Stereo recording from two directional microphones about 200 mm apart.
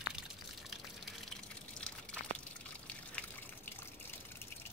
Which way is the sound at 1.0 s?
5° left (ahead or behind).